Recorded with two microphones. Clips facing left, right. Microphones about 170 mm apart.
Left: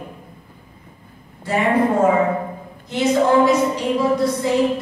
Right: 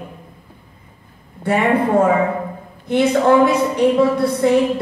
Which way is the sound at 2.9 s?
60° right (ahead or behind).